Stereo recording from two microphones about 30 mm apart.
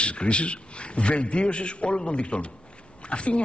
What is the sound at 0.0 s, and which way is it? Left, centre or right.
Speech, left.